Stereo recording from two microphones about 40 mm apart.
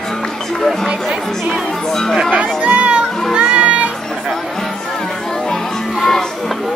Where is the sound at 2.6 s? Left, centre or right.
Right.